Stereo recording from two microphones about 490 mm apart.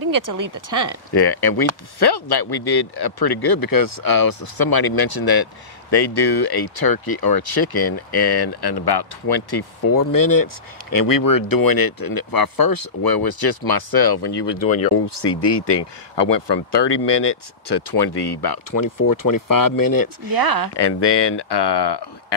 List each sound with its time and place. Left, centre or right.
0.1 s speech: right
1.1 s speech: left
20.2 s speech: right
20.7 s speech: left